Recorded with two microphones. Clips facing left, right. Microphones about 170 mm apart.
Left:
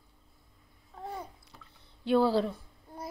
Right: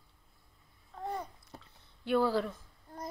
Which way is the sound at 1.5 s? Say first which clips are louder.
Right 5 dB; 45° right (ahead or behind).